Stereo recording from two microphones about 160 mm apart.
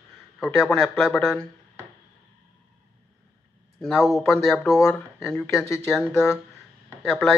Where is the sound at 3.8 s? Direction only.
Centre (ahead or behind).